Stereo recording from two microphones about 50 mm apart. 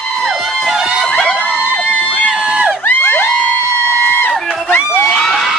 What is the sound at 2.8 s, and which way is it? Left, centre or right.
Music, left.